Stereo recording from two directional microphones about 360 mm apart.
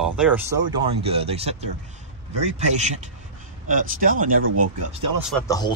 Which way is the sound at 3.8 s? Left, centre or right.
Right.